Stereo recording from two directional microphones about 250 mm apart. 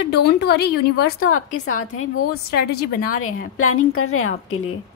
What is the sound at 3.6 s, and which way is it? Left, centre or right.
A woman's voice, left.